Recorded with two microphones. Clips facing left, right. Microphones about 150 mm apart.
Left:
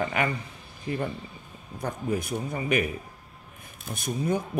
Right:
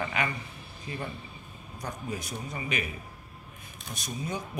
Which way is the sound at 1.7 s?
55° left (ahead or behind).